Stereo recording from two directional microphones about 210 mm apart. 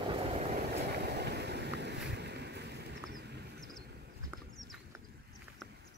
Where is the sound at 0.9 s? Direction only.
50° right (ahead or behind).